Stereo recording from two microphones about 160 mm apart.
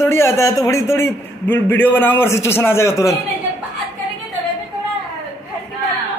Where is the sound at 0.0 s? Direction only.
15° left (ahead or behind).